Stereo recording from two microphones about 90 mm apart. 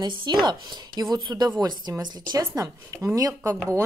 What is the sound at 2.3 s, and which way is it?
A woman's voice, 45° right (ahead or behind).